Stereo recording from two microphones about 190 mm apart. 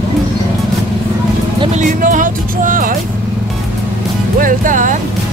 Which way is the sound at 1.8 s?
45° right (ahead or behind).